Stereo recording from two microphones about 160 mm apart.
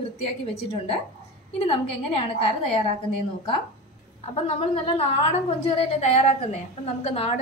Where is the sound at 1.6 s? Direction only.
40° left (ahead or behind).